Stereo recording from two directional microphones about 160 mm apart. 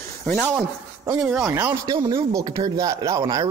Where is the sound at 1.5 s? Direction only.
15° right (ahead or behind).